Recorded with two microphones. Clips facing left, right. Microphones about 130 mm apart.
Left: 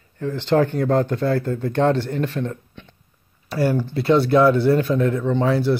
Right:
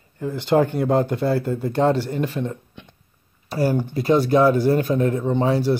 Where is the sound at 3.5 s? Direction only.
35° right (ahead or behind).